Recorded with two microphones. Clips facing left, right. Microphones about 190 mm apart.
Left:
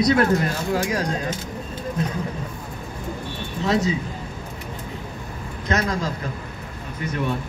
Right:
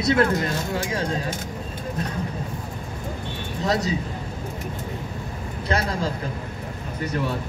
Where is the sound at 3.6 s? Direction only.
40° right (ahead or behind).